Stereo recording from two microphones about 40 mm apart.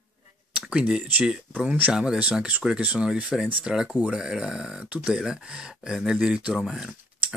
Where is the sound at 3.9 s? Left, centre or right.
Right.